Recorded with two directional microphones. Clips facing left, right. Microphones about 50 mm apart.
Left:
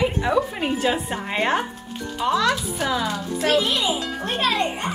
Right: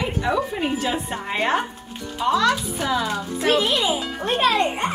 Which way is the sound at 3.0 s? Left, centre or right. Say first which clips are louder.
Right 1 dB; centre.